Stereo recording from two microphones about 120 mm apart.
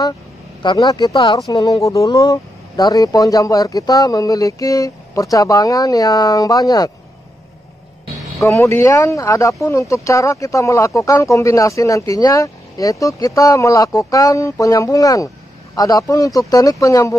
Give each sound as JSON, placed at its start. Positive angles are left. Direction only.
{"t": 0.6, "sound": "speech", "side_deg": 35}
{"t": 8.5, "sound": "speech", "side_deg": 25}